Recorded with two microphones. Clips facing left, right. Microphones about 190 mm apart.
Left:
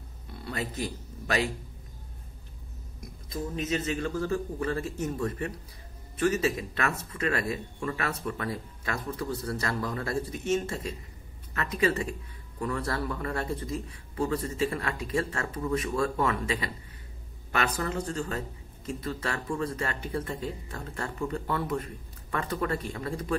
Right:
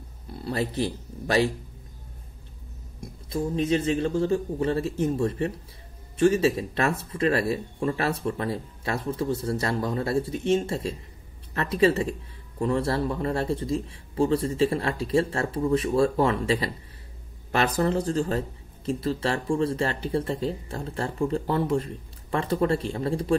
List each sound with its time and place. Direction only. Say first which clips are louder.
0.4 s speech: right 6 dB; 30° right (ahead or behind)
3.0 s speech: right 6 dB; 30° right (ahead or behind)